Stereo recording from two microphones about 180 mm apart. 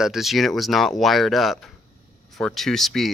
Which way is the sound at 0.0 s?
Centre (ahead or behind).